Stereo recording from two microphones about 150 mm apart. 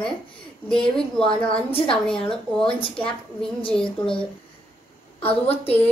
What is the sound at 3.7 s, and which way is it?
Speech, 5° left (ahead or behind).